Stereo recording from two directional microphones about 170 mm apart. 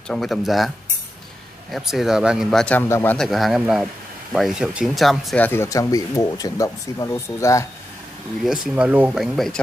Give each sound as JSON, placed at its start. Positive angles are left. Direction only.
{"t": 0.1, "sound": "speech", "side_deg": 0}
{"t": 1.7, "sound": "speech", "side_deg": 0}
{"t": 3.2, "sound": "speech", "side_deg": 0}
{"t": 5.4, "sound": "speech", "side_deg": 15}
{"t": 8.7, "sound": "speech", "side_deg": -10}